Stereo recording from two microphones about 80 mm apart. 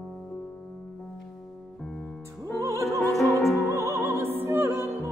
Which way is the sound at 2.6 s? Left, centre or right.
Right.